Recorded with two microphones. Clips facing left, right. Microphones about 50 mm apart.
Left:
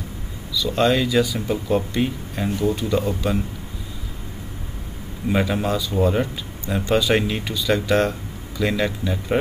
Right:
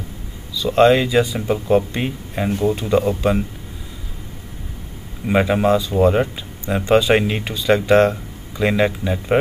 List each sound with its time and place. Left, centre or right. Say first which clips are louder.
0.6 s speech: right 6 dB; right
5.3 s speech: right 6 dB; right